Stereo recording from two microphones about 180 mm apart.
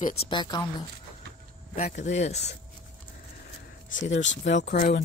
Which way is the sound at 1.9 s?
40° left (ahead or behind).